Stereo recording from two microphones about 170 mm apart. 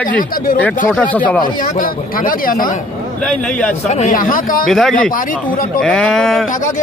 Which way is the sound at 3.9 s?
40° left (ahead or behind).